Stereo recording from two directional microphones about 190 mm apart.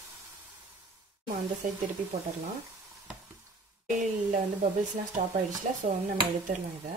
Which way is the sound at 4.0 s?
40° right (ahead or behind).